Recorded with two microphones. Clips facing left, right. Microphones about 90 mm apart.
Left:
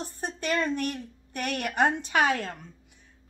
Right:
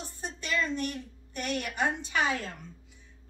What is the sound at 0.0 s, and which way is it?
A woman's voice, 55° left (ahead or behind).